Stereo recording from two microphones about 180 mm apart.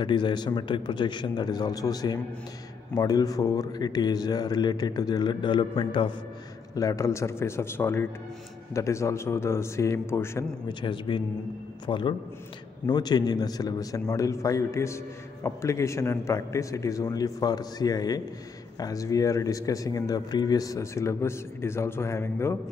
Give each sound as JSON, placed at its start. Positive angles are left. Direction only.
{"t": 0.0, "sound": "a man's voice", "side_deg": 25}
{"t": 10.7, "sound": "a man's voice", "side_deg": 25}